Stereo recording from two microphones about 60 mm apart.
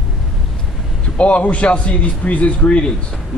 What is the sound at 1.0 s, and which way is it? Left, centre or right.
A man's voice, centre.